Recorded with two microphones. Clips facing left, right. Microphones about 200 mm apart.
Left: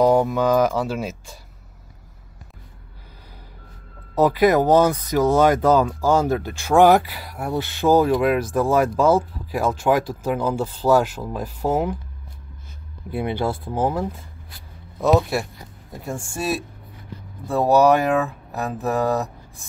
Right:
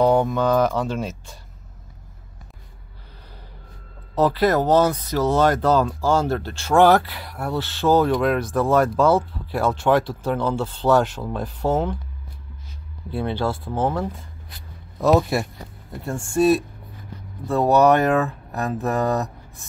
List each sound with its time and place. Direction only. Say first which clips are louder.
0.0 s speech: left 1 dB; 10° left (ahead or behind)
4.1 s speech: left 2 dB; 10° left (ahead or behind)
13.1 s speech: even; 15° left (ahead or behind)
15.0 s speech: right 1 dB; centre (ahead or behind)